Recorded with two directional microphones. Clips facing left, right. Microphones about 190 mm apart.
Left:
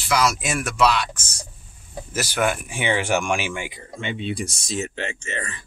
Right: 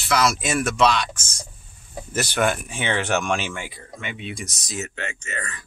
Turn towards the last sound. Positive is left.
turn(degrees=30)  # may be behind; listen again after turning